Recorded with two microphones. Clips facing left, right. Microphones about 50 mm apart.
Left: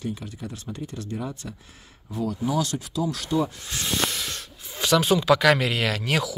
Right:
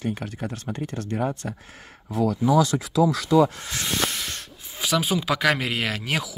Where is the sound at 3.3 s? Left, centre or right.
Right.